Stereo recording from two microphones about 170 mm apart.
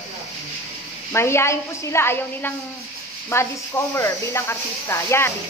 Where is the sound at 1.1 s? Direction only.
15° left (ahead or behind).